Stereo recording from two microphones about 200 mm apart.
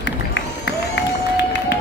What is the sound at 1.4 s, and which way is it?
Music, 60° left (ahead or behind).